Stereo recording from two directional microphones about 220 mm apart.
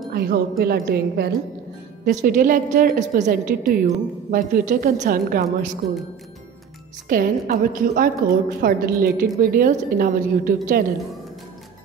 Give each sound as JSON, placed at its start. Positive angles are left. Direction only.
{"t": 0.1, "sound": "a woman's voice", "side_deg": -45}
{"t": 5.8, "sound": "speech", "side_deg": 0}
{"t": 7.1, "sound": "a woman's voice", "side_deg": -40}